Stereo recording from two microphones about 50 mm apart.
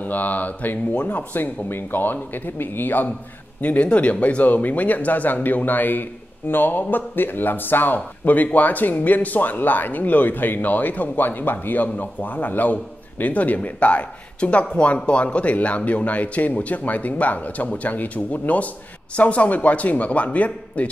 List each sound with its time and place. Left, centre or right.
0.0 s speech: left
3.6 s speech: left